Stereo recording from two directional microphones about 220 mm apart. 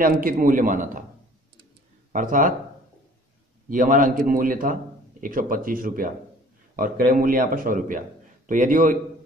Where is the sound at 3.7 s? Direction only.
40° right (ahead or behind).